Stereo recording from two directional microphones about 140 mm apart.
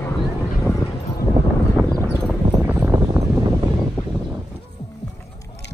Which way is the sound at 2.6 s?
10° right (ahead or behind).